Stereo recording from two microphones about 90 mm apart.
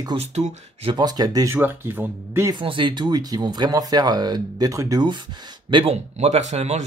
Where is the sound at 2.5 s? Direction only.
70° right (ahead or behind); by 5.0 s 40° right (ahead or behind).